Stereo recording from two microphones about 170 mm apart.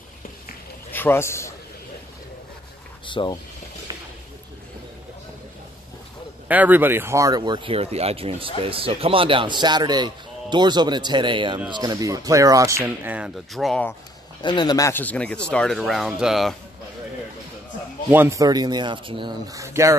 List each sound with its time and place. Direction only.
0.9 s a man's voice: 15° left (ahead or behind)
3.1 s speech: 30° left (ahead or behind)
6.4 s speech: 10° right (ahead or behind)
14.4 s speech: 25° left (ahead or behind); by 16.5 s centre (ahead or behind)
18.1 s speech: 15° right (ahead or behind)